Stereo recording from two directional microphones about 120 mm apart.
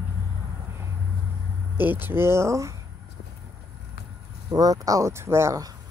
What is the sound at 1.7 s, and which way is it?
Speech, 15° right (ahead or behind).